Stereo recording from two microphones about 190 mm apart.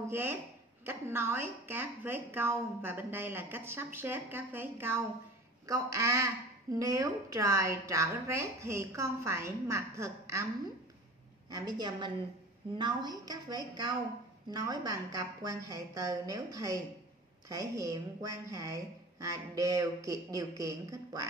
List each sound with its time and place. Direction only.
0.1 s a woman's voice: 10° right (ahead or behind)
11.5 s a woman's voice: 20° right (ahead or behind)